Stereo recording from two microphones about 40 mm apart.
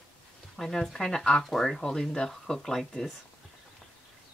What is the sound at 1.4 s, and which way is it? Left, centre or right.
Speech, centre.